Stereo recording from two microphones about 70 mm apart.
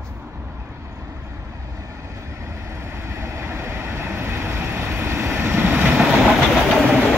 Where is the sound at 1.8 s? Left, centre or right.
Right.